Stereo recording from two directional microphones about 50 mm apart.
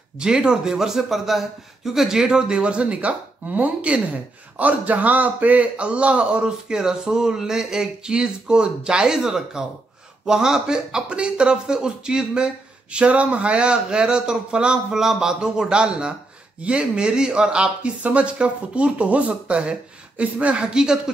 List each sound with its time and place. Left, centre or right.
0.2 s a man's voice: centre
6.7 s a man's voice: centre